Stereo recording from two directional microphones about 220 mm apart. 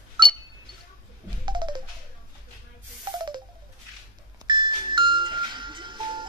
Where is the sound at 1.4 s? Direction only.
20° right (ahead or behind).